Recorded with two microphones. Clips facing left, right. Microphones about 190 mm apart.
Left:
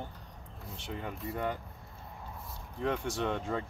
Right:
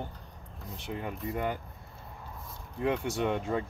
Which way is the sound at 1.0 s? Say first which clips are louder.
Right 2 dB; 5° right (ahead or behind).